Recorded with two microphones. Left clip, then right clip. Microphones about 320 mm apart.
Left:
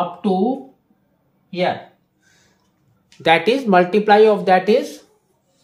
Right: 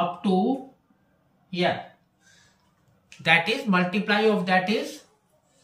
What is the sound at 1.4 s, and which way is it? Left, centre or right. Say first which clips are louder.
Speech: left 5 dB; centre.